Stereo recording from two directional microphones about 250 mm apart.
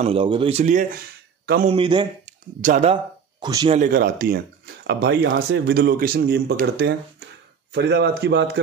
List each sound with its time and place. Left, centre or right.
0.0 s speech: right
1.4 s a man's voice: right
1.7 s speech: centre
3.7 s speech: right